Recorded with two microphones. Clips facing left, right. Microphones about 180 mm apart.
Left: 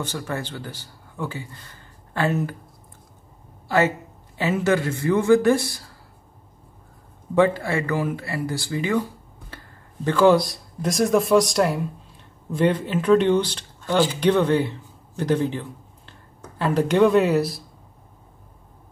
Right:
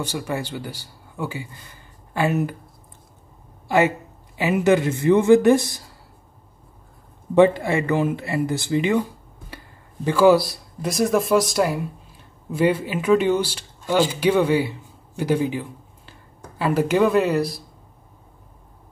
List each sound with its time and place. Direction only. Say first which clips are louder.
0.0 s speech: right 2 dB; 10° right (ahead or behind)
3.6 s speech: right 2 dB; 15° right (ahead or behind)
7.3 s speech: right 3 dB; 20° right (ahead or behind)
10.0 s speech: right 1 dB; 5° right (ahead or behind)